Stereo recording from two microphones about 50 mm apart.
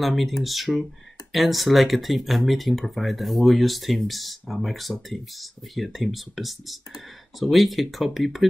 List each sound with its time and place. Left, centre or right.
0.0 s speech: centre